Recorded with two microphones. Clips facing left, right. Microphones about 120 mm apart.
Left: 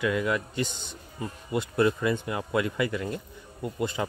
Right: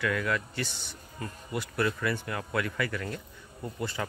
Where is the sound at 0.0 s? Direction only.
20° left (ahead or behind).